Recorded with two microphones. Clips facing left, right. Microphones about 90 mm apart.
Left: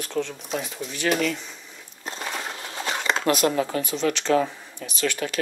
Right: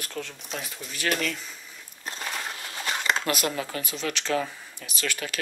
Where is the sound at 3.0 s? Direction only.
5° left (ahead or behind).